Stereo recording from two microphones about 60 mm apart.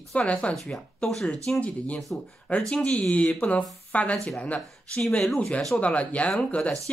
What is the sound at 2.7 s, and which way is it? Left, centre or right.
Speech, centre.